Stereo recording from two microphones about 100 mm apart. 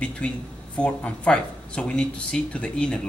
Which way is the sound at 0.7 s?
10° left (ahead or behind).